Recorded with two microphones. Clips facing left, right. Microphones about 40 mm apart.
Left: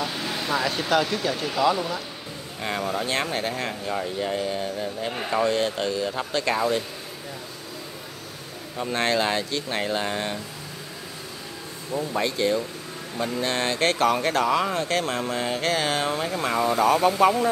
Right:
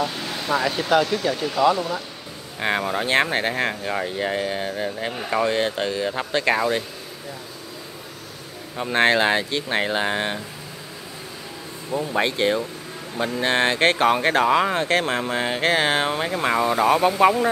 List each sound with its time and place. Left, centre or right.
0.0 s speech: centre
2.8 s speech: right
5.3 s speech: right
8.9 s speech: right
11.9 s speech: centre
12.2 s speech: right